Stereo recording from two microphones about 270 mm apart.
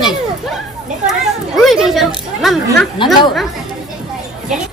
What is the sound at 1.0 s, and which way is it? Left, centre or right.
Speech, centre.